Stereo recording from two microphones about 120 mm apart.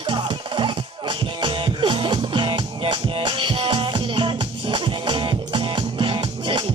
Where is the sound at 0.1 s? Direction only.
45° right (ahead or behind).